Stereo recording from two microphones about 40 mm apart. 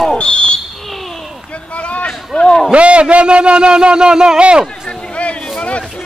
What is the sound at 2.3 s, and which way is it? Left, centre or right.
Speech, centre.